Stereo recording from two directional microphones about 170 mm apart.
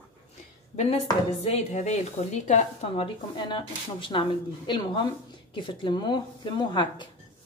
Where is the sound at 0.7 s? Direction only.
40° left (ahead or behind).